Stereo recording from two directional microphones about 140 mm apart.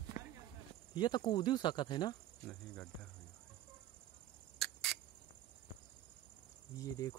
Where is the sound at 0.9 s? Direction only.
30° left (ahead or behind).